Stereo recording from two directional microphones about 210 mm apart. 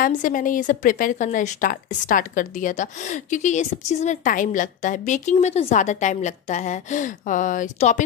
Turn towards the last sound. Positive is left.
turn(degrees=35)  # may be behind; listen again after turning